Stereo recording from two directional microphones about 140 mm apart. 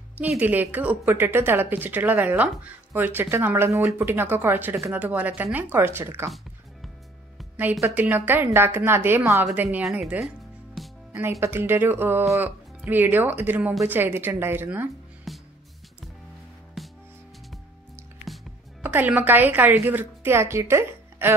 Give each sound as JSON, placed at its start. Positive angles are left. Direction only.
{"t": 0.4, "sound": "a woman's voice", "side_deg": -10}
{"t": 7.8, "sound": "a woman's voice", "side_deg": -10}
{"t": 9.8, "sound": "music", "side_deg": -5}
{"t": 11.1, "sound": "a woman's voice", "side_deg": -20}
{"t": 15.3, "sound": "music", "side_deg": 0}
{"t": 16.8, "sound": "music", "side_deg": 0}
{"t": 18.8, "sound": "a woman's voice", "side_deg": -15}